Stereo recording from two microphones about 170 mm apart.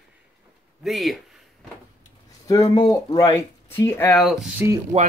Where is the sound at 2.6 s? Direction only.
30° left (ahead or behind).